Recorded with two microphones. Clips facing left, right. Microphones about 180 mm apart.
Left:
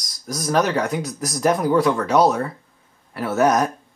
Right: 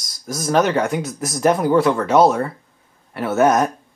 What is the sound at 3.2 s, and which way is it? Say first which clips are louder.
Speech: right 2 dB; 25° right (ahead or behind).